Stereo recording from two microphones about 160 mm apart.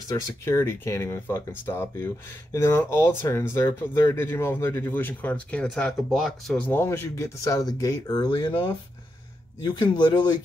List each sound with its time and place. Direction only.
0.1 s speech: 15° left (ahead or behind)